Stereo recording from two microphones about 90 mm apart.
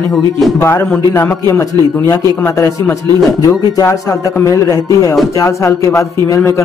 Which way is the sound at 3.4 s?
40° left (ahead or behind).